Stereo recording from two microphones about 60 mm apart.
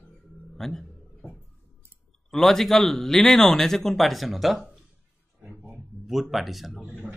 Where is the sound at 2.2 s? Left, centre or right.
Centre.